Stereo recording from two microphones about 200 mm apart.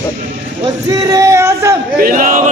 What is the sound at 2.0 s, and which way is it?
Battle cry, 45° right (ahead or behind).